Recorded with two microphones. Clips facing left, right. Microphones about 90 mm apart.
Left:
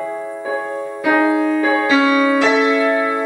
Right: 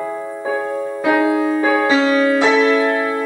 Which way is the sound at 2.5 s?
15° left (ahead or behind).